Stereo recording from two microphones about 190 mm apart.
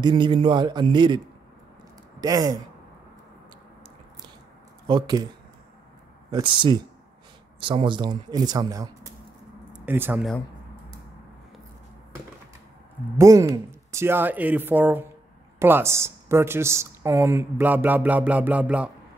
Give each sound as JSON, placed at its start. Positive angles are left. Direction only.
{"t": 0.0, "sound": "speech", "side_deg": -25}
{"t": 4.8, "sound": "speech", "side_deg": -20}
{"t": 6.3, "sound": "speech", "side_deg": -25}
{"t": 9.7, "sound": "a sound", "side_deg": -10}
{"t": 13.2, "sound": "speech", "side_deg": -15}